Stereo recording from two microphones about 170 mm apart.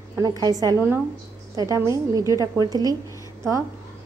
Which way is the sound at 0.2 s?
20° right (ahead or behind).